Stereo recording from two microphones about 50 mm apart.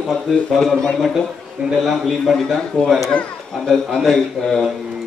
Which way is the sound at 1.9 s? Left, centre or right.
Centre.